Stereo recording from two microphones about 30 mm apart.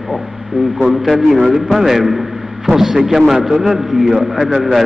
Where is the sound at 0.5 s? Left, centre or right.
Centre.